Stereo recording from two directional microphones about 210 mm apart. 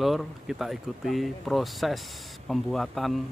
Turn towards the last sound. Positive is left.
turn(degrees=0)  # may be behind; listen again after turning